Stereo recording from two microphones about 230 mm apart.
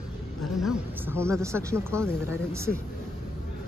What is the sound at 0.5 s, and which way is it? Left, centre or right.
Speech, centre.